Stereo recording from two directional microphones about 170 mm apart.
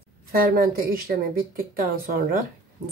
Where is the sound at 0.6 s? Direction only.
55° right (ahead or behind).